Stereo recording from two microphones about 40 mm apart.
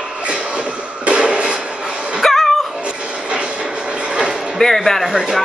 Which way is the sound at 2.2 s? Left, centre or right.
Centre.